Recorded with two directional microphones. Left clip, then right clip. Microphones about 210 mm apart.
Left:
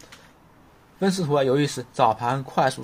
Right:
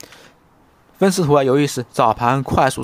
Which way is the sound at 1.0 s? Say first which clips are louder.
Right 7 dB; 35° right (ahead or behind).